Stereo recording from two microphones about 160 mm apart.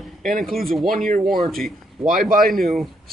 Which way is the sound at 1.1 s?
65° right (ahead or behind).